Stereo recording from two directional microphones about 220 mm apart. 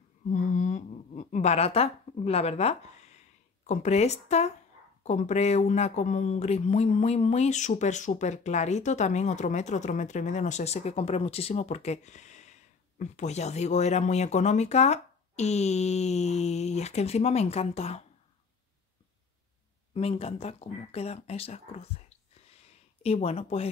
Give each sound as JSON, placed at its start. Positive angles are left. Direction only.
{"t": 0.4, "sound": "a sound", "side_deg": 35}
{"t": 3.6, "sound": "speech", "side_deg": 30}
{"t": 19.9, "sound": "speech", "side_deg": 25}
{"t": 23.0, "sound": "speech", "side_deg": 30}